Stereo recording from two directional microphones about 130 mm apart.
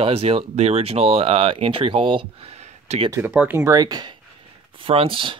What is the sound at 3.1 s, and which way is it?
Speech, 15° right (ahead or behind).